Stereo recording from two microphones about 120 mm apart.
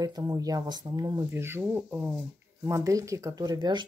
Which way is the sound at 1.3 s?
20° right (ahead or behind).